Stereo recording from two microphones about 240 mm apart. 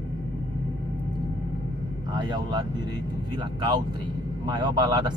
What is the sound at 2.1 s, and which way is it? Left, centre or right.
Speech, centre.